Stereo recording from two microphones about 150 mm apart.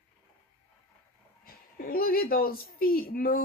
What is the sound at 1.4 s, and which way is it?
A woman's voice, 75° left (ahead or behind).